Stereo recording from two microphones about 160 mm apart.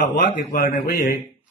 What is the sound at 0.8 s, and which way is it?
Speech, 70° left (ahead or behind).